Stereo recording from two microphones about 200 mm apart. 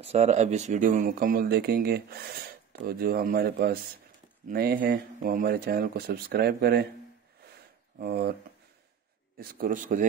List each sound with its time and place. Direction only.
0.0 s speech: 35° right (ahead or behind); by 6.9 s 50° right (ahead or behind)
8.0 s speech: 50° right (ahead or behind)
9.4 s speech: 45° right (ahead or behind)